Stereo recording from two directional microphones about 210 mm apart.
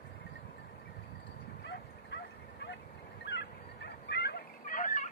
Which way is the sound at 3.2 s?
55° left (ahead or behind).